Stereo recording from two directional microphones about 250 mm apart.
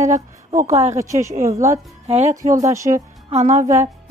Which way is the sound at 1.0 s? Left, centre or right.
Centre.